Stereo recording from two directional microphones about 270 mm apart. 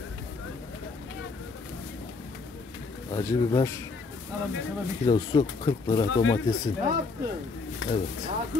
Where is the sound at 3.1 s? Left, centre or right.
Centre.